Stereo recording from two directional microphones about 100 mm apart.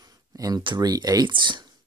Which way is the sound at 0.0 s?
40° right (ahead or behind).